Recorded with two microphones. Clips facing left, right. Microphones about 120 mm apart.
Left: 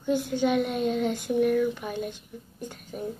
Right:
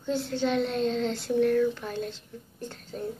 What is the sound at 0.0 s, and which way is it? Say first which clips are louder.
Speech: left 3 dB; 15° left (ahead or behind).